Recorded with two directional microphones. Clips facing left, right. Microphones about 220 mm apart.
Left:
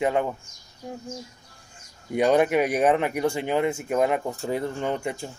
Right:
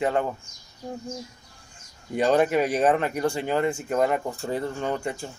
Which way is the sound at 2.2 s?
15° left (ahead or behind).